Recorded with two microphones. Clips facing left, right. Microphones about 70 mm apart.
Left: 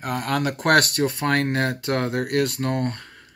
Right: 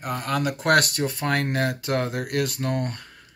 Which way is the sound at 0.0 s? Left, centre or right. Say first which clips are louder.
Left 2 dB; left.